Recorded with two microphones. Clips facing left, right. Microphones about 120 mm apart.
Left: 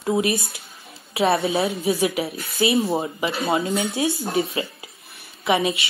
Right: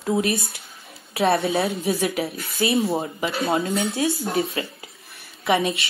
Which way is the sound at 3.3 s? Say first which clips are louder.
Even; centre (ahead or behind).